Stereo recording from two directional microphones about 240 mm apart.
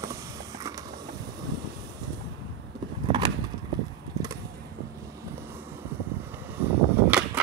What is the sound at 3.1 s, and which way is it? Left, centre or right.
Vehicle, centre.